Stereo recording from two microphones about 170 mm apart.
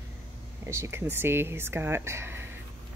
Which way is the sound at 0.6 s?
15° right (ahead or behind).